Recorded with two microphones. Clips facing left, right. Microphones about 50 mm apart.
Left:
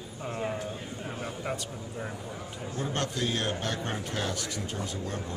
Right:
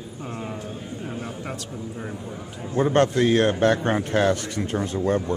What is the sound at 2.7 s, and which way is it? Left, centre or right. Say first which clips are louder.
A man's voice: right 13 dB; right.